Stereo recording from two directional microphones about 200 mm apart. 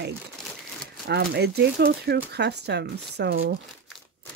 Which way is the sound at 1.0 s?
55° right (ahead or behind).